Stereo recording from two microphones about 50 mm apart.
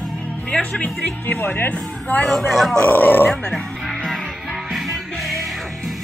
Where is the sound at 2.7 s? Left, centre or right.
Left.